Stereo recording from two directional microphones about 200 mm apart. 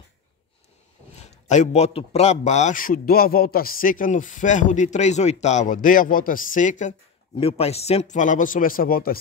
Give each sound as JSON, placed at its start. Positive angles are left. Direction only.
{"t": 1.2, "sound": "a man's voice", "side_deg": 35}